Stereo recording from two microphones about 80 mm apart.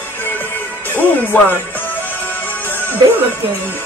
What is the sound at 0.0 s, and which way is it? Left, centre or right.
Music, left.